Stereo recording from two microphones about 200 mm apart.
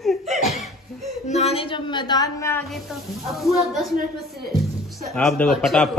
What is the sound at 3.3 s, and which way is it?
Speech, centre (ahead or behind).